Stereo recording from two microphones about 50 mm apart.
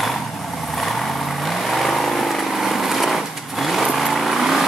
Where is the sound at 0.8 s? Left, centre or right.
Centre.